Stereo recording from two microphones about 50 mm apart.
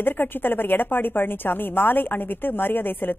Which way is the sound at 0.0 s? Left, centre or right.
Left.